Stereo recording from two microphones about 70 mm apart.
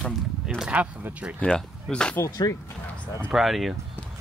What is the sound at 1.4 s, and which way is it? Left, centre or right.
Speech, centre.